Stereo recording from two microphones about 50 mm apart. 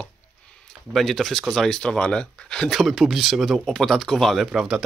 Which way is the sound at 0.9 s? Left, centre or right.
Centre.